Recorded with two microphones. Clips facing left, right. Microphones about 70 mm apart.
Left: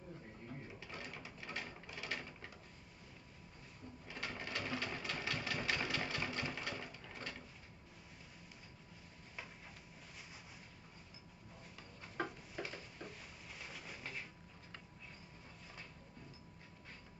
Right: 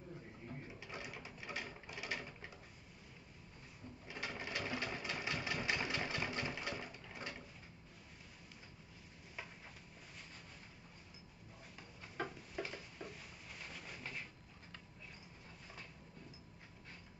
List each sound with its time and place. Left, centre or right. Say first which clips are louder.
0.8 s sewing machine: right 2 dB; centre
4.1 s sewing machine: even; centre
12.2 s a sound: even; centre